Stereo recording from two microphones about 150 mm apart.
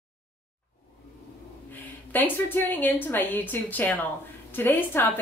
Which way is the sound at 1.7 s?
10° left (ahead or behind).